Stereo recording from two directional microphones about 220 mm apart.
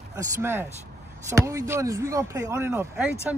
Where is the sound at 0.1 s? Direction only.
15° right (ahead or behind).